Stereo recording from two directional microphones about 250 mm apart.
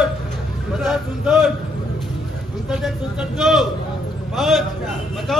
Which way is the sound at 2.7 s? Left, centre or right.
Centre.